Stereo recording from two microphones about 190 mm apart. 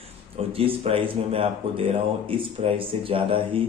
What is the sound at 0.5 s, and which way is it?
Speech, 30° right (ahead or behind).